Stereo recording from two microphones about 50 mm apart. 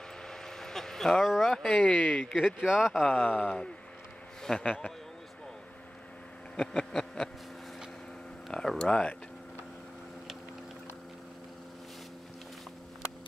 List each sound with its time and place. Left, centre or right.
0.2 s vehicle: centre
1.2 s speech: centre
2.0 s speech: left
2.4 s speech: centre
3.1 s speech: left
6.5 s a sound: centre
8.5 s speech: centre